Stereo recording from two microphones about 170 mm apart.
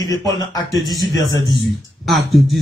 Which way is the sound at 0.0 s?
20° left (ahead or behind).